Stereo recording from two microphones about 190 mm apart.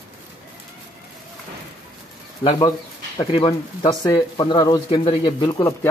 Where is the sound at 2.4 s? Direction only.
25° left (ahead or behind).